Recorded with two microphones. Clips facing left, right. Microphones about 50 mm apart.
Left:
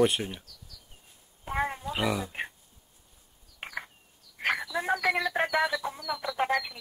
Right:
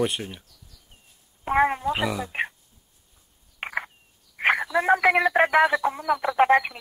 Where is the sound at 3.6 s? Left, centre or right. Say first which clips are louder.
Right 8 dB; right.